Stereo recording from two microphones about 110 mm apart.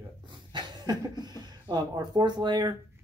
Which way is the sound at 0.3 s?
45° right (ahead or behind).